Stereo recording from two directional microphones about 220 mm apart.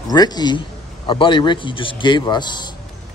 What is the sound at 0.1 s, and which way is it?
A man's voice, 20° left (ahead or behind).